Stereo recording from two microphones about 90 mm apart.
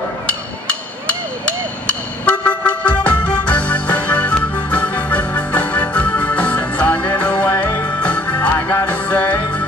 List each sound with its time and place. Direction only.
0.3 s hammer: 15° left (ahead or behind)
1.9 s music: 15° left (ahead or behind)
8.0 s music: 15° left (ahead or behind)